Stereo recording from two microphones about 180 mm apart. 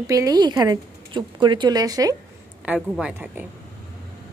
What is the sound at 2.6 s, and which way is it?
Speech, 5° right (ahead or behind).